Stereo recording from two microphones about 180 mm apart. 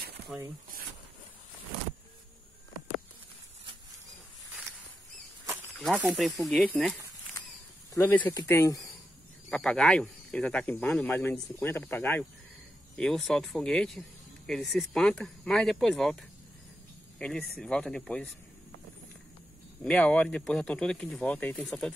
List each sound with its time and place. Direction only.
5.9 s speech: 5° right (ahead or behind)
7.4 s snake: 20° left (ahead or behind)
7.9 s speech: 10° left (ahead or behind)
9.5 s speech: 5° left (ahead or behind)
19.8 s speech: 5° left (ahead or behind)